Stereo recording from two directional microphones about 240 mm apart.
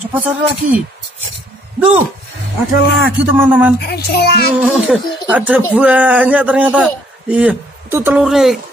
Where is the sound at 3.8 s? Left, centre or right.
Left.